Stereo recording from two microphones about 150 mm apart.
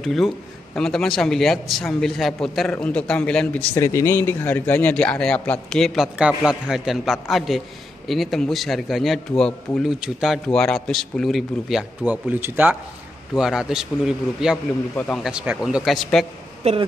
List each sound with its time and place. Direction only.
0.0 s a man's voice: centre (ahead or behind)
3.7 s a man's voice: 20° left (ahead or behind); by 12.7 s 15° right (ahead or behind)
13.3 s a man's voice: 5° right (ahead or behind)
15.3 s a man's voice: 5° right (ahead or behind)
16.6 s speech: 45° right (ahead or behind)